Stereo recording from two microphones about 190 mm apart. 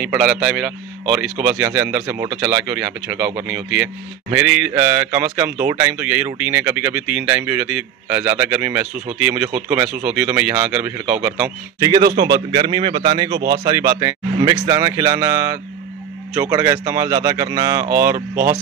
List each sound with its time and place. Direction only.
0.0 s speech: 5° right (ahead or behind)
11.8 s a man's voice: 20° right (ahead or behind)